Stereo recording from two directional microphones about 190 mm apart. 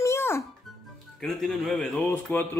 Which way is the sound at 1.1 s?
Centre (ahead or behind).